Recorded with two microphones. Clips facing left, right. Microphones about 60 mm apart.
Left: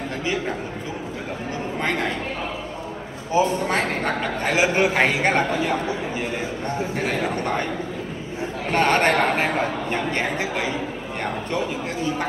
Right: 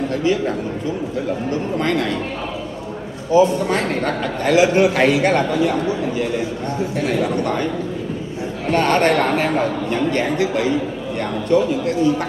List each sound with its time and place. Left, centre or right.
0.1 s a man's voice: left
3.3 s a man's voice: left